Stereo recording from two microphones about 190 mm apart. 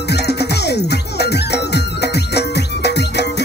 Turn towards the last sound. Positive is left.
turn(degrees=60)  # may be behind; listen again after turning